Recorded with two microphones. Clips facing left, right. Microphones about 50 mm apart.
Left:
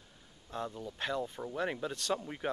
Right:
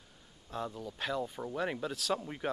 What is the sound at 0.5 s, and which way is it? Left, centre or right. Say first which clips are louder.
Speech: even; centre.